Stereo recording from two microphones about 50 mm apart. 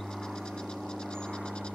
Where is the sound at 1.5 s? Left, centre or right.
Centre.